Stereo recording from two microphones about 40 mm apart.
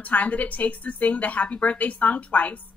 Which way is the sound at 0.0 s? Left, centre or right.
Left.